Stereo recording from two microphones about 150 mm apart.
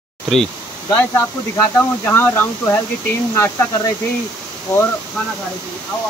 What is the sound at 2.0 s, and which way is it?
Speech, 10° left (ahead or behind).